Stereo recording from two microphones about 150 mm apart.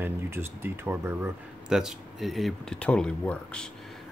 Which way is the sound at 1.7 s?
5° right (ahead or behind).